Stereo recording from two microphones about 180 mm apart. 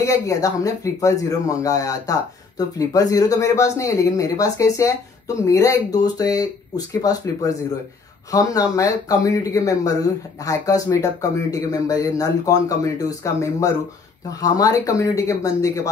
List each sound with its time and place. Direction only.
0.0 s speech: 20° left (ahead or behind)